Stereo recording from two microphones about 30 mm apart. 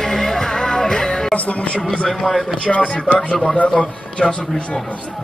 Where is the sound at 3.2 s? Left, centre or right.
Left.